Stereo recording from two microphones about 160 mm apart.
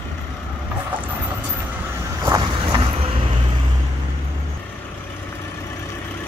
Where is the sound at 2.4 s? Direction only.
30° right (ahead or behind).